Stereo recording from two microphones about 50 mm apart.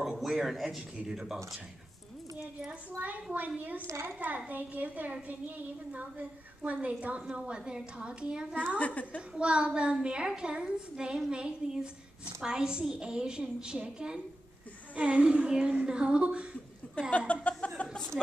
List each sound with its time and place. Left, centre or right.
0.2 s a woman's voice: centre
2.7 s a child's voice: right
3.8 s a woman's voice: right
4.5 s a child's voice: right; by 8.6 s centre
8.7 s a woman's voice: left
9.3 s a woman's voice: right
17.3 s a sound: left
18.1 s a woman's voice: centre